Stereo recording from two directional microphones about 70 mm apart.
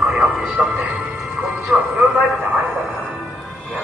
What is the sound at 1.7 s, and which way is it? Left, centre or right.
Speech, centre.